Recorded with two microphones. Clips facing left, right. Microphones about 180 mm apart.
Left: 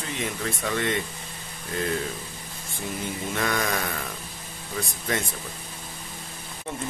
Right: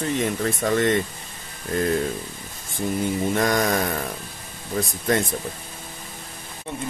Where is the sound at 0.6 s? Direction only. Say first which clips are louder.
Right 7 dB; 40° right (ahead or behind).